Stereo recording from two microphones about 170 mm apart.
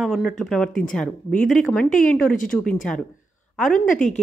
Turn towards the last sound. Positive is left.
turn(degrees=5)  # may be behind; listen again after turning